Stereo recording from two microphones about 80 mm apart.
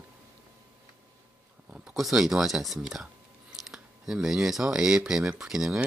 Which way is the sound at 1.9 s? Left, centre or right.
Centre.